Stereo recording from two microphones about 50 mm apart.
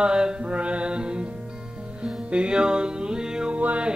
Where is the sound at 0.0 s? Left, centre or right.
Centre.